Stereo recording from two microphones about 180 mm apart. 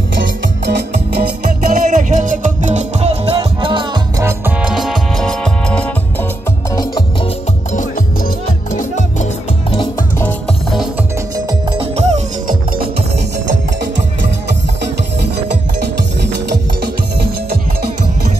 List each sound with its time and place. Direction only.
0.7 s music: 65° right (ahead or behind); by 4.0 s 30° right (ahead or behind)
4.2 s music: 10° right (ahead or behind); by 5.9 s 5° left (ahead or behind)
6.7 s music: 20° left (ahead or behind)
8.7 s music: 40° left (ahead or behind)
11.3 s music: 30° right (ahead or behind)
16.8 s music: 60° right (ahead or behind)